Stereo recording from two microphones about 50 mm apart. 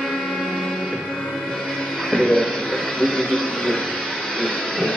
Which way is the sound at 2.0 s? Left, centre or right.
Centre.